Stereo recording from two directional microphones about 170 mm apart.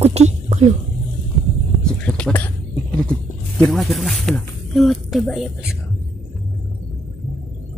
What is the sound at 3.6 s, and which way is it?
Speech, centre (ahead or behind).